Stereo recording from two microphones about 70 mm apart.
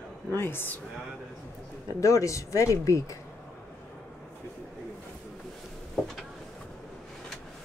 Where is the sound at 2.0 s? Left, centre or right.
Left.